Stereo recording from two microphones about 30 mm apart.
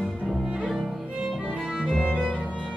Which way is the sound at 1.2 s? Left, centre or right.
Centre.